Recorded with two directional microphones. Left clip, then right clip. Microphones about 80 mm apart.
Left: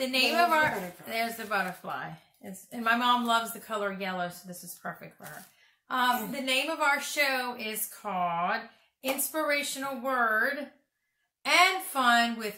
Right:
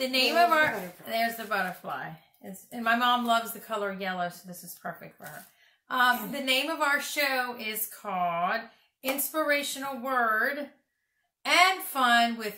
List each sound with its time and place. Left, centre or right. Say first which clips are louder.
0.0 s a woman's voice: right 2 dB; right